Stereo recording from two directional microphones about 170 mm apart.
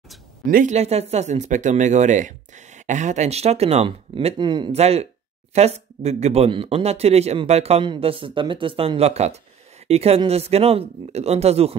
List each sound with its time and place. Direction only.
0.5 s speech: 55° right (ahead or behind)
0.7 s speech: 40° right (ahead or behind)
4.7 s speech: 40° right (ahead or behind)